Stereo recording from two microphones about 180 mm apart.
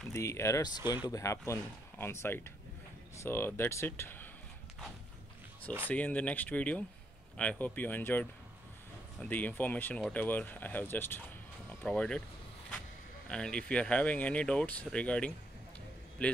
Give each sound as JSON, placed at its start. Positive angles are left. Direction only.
{"t": 0.1, "sound": "speech", "side_deg": 15}
{"t": 5.9, "sound": "speech", "side_deg": 10}
{"t": 13.3, "sound": "speech", "side_deg": 5}